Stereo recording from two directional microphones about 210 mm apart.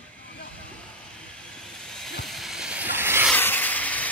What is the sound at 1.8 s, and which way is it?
Hiss, 5° left (ahead or behind).